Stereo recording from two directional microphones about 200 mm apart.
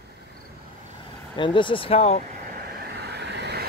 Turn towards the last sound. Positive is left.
turn(degrees=-55)  # may be behind; listen again after turning